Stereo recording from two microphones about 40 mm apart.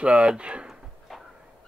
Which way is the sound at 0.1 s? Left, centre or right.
Centre.